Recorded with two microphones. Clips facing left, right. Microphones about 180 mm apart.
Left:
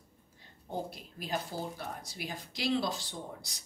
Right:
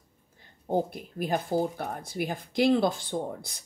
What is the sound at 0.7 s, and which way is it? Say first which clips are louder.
Speech: right 10 dB; 55° right (ahead or behind).